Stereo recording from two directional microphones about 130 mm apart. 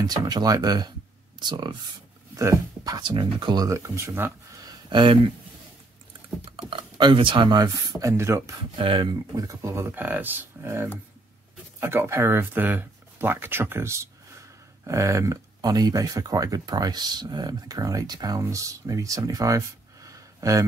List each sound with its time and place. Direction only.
0.0 s speech: 30° right (ahead or behind)
2.3 s speech: 25° right (ahead or behind); by 5.3 s 40° right (ahead or behind)
6.7 s speech: 40° right (ahead or behind); by 8.5 s 20° right (ahead or behind)
8.7 s speech: 40° right (ahead or behind)
9.1 s speech: 25° right (ahead or behind)